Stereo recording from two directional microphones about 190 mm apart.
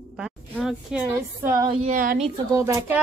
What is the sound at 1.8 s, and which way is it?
Speech, 45° right (ahead or behind).